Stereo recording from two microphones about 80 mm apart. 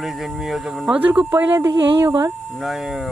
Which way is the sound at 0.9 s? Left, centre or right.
Centre.